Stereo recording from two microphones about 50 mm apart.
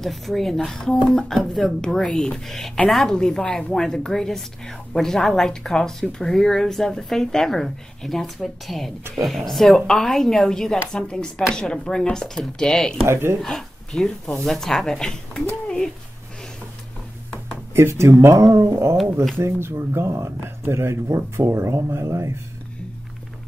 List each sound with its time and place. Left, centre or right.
0.0 s a woman's voice: centre
13.0 s speech: right
13.4 s a woman's voice: centre
17.7 s speech: right
18.6 s speech: right